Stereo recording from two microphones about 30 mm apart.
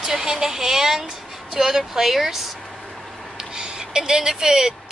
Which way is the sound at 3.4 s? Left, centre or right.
Right.